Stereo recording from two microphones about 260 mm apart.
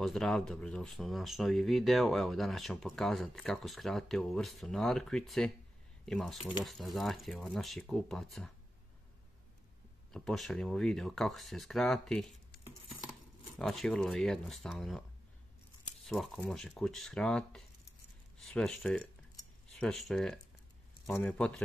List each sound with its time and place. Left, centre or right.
0.0 s speech: centre
10.1 s speech: centre
13.6 s speech: centre